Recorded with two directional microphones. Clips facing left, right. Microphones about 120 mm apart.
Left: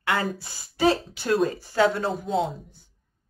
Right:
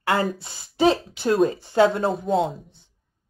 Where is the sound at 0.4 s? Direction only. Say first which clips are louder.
Right 3 dB; 25° right (ahead or behind).